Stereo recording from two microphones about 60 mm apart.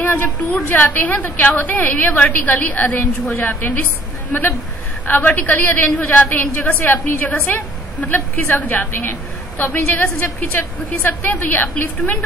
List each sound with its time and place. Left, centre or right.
0.0 s a woman's voice: left